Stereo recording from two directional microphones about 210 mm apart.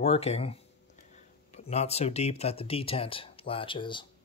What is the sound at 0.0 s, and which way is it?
Speech, 30° left (ahead or behind).